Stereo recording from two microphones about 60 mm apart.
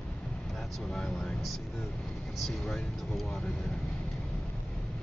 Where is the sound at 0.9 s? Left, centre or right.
Centre.